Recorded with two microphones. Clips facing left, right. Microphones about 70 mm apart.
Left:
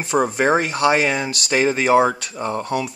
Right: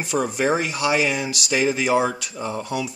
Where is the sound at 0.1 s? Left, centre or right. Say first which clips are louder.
Left 4 dB; left.